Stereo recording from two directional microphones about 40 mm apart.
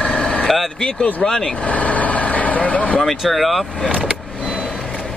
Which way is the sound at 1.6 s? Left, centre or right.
Left.